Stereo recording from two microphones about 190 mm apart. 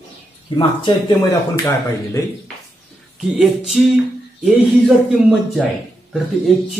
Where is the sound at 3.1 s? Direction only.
Centre (ahead or behind).